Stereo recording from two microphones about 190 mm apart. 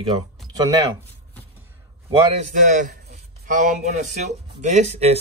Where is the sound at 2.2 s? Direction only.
35° right (ahead or behind).